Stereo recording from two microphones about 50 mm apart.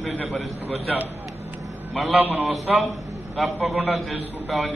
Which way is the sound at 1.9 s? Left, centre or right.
Centre.